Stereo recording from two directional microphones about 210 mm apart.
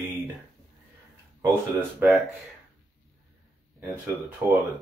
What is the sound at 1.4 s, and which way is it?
Speech, 10° right (ahead or behind).